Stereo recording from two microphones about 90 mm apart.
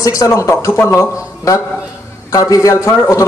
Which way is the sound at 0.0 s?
40° left (ahead or behind).